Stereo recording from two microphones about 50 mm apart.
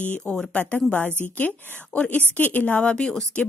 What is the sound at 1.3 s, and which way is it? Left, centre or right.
A woman's voice, left.